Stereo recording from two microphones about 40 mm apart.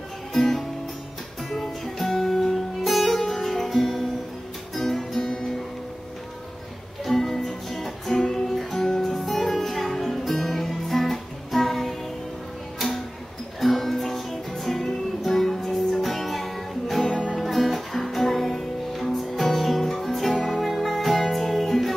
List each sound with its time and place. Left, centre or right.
0.3 s music: centre
7.1 s music: centre
17.0 s music: left
17.4 s music: centre